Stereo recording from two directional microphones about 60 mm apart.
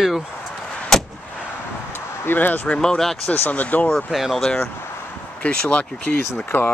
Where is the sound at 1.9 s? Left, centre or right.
Left.